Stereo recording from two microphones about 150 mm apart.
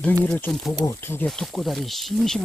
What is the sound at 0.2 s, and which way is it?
Speech, 15° left (ahead or behind).